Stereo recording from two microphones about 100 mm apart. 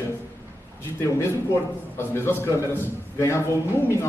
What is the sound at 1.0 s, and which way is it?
A man's voice, 25° left (ahead or behind).